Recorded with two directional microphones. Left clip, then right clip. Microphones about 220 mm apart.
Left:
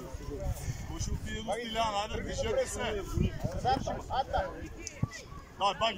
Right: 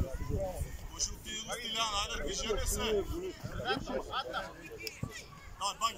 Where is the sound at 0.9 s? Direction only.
30° left (ahead or behind).